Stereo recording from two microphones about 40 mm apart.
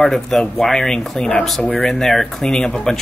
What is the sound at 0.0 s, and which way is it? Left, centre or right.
Speech, centre.